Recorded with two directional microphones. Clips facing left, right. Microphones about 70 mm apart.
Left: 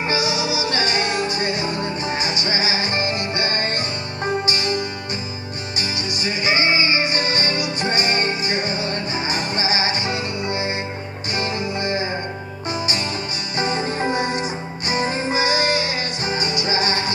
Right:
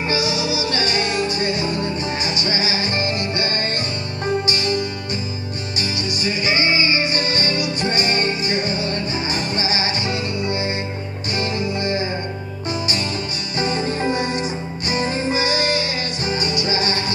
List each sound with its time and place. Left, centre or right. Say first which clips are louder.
0.1 s music: right 1 dB; centre